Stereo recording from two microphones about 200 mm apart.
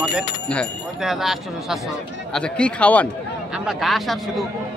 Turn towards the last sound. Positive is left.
turn(degrees=0)  # may be behind; listen again after turning